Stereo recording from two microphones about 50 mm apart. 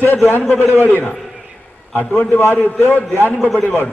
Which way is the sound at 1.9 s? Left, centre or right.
Left.